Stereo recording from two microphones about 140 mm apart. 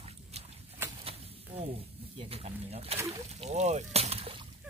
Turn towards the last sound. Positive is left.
turn(degrees=-40)  # may be behind; listen again after turning